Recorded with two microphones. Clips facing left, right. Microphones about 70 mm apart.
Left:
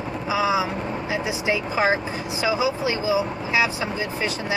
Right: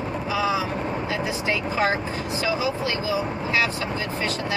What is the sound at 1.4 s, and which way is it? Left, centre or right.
Speech, centre.